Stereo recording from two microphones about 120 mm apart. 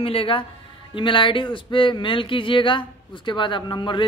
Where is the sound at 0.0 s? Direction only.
50° left (ahead or behind).